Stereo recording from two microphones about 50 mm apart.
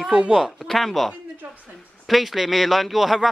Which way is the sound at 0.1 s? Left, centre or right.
Centre.